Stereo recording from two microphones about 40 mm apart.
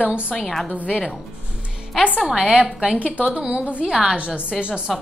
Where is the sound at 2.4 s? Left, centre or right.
Right.